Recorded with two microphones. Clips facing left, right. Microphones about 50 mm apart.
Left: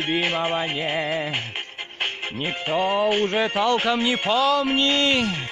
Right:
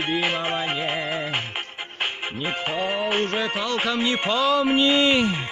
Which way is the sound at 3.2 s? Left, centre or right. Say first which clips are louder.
Left 4 dB; left.